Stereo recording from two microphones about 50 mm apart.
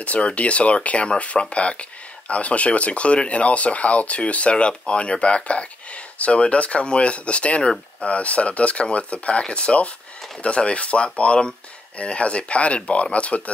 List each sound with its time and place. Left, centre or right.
0.0 s speech: left